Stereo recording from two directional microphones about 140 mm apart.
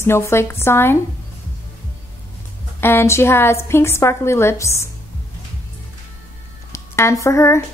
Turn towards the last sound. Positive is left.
turn(degrees=20)  # may be behind; listen again after turning